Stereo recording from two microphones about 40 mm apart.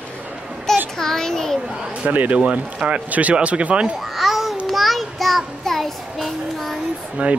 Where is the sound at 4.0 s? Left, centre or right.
Centre.